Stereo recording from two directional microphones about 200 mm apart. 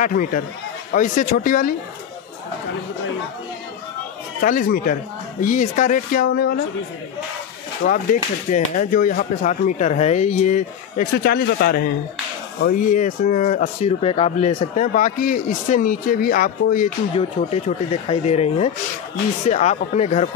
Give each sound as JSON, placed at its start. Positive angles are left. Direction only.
{"t": 0.0, "sound": "speech", "side_deg": 40}
{"t": 4.4, "sound": "speech", "side_deg": 45}
{"t": 7.8, "sound": "speech", "side_deg": 40}
{"t": 17.1, "sound": "speech", "side_deg": 30}